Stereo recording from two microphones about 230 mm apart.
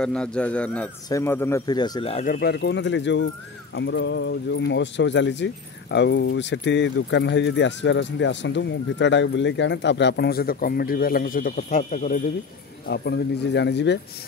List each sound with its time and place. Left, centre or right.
0.0 s speech: centre; by 2.2 s left
2.2 s speech: left
12.8 s speech: left